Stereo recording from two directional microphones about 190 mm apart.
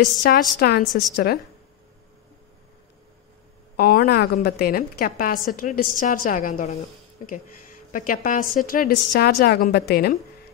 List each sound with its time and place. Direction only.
0.2 s a woman's voice: 45° left (ahead or behind)
3.7 s a woman's voice: 50° left (ahead or behind)